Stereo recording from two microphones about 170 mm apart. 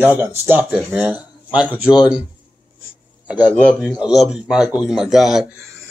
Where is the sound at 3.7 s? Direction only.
10° right (ahead or behind).